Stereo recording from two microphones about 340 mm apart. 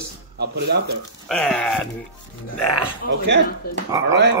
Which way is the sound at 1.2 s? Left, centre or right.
Centre.